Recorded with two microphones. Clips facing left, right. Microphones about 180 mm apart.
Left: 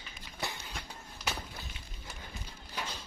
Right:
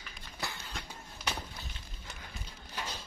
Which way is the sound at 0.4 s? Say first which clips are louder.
Left 2 dB; 20° left (ahead or behind).